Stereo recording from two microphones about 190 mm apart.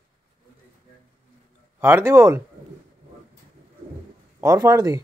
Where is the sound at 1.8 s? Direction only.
10° right (ahead or behind).